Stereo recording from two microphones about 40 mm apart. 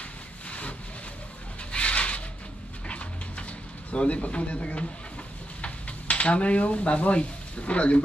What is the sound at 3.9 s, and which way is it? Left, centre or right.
Speech, left.